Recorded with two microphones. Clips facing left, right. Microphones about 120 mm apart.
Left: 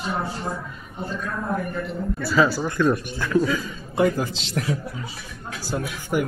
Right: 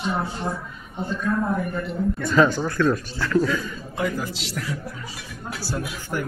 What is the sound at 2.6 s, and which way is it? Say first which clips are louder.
A man's voice: even; 20° left (ahead or behind).